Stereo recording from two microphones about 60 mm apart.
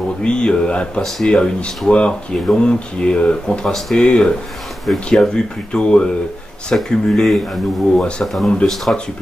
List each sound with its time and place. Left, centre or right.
0.2 s speech: centre
6.7 s speech: centre